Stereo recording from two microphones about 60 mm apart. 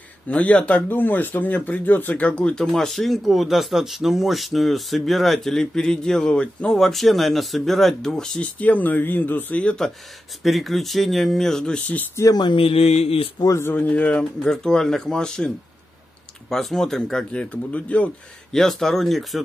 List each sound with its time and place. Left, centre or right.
0.3 s speech: left
2.7 s speech: centre
6.8 s speech: centre
8.5 s speech: left
9.8 s speech: centre
12.2 s speech: left
13.7 s speech: left
14.4 s speech: centre
17.3 s speech: left
18.5 s speech: centre